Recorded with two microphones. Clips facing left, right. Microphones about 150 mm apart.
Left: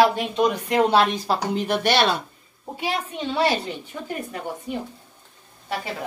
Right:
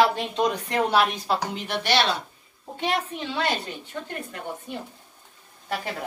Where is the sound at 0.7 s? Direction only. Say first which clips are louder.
Left 5 dB; 20° left (ahead or behind); by 2.1 s 50° left (ahead or behind).